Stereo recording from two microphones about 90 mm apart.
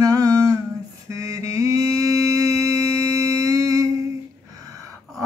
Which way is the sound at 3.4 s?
40° right (ahead or behind).